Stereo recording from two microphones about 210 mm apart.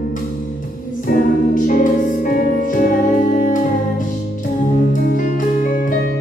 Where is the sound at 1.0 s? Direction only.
40° left (ahead or behind).